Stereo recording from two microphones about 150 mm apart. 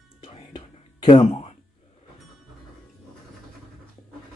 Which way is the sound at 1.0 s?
45° left (ahead or behind).